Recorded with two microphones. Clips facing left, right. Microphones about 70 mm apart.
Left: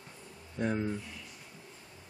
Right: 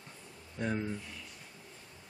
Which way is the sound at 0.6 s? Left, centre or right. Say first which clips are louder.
Left 3 dB; centre.